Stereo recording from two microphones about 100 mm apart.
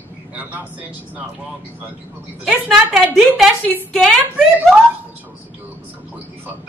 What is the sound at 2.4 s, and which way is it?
A woman's voice, 5° right (ahead or behind).